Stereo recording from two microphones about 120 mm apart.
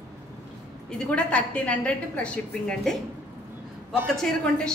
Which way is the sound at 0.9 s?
5° left (ahead or behind).